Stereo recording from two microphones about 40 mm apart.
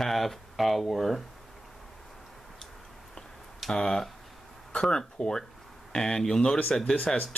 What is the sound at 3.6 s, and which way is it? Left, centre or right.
Speech, centre.